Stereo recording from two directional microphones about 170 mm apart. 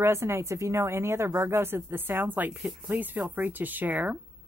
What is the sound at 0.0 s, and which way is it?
Speech, 15° right (ahead or behind).